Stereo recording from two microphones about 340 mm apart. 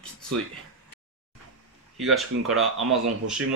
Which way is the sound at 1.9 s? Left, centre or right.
Centre.